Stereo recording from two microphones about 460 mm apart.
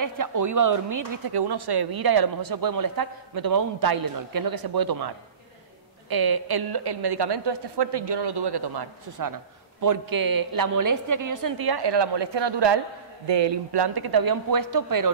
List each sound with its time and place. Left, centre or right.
0.0 s a woman's voice: right